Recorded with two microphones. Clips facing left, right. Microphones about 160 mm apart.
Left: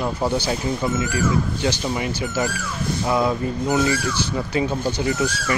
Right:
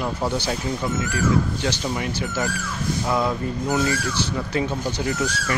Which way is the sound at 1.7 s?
5° left (ahead or behind).